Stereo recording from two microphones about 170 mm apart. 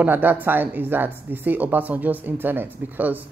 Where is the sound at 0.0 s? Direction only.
10° right (ahead or behind).